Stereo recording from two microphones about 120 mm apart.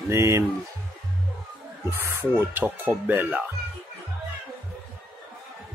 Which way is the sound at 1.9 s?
20° right (ahead or behind).